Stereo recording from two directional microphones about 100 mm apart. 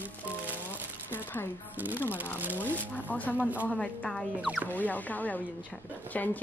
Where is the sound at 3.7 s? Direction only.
5° left (ahead or behind).